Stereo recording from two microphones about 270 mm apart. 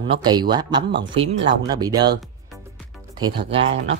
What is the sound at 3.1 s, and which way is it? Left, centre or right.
Speech, centre.